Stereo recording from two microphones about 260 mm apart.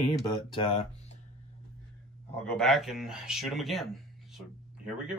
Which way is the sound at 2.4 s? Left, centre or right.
Centre.